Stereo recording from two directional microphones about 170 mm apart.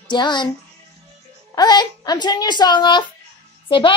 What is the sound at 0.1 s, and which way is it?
Speech, 25° left (ahead or behind).